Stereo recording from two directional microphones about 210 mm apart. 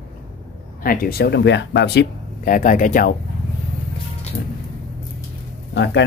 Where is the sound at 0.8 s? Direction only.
45° left (ahead or behind).